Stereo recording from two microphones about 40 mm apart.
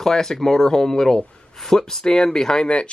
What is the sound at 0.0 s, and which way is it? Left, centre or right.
Speech, centre.